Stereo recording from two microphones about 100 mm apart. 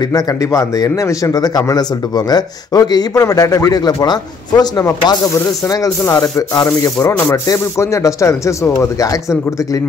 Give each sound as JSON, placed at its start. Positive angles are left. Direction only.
{"t": 0.0, "sound": "speech", "side_deg": 35}